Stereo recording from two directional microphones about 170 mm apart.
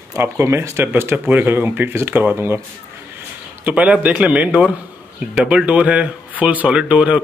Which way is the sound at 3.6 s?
10° right (ahead or behind).